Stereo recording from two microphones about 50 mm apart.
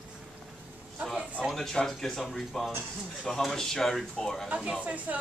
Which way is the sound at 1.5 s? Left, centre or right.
Centre.